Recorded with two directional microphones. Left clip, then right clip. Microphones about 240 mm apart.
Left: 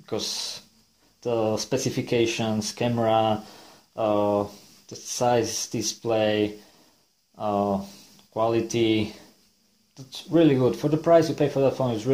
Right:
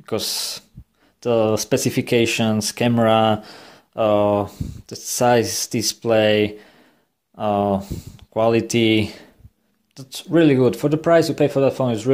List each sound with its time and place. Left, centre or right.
0.0 s speech: right